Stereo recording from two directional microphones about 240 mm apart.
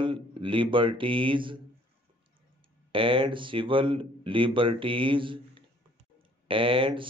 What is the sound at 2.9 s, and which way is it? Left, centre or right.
A man's voice, right.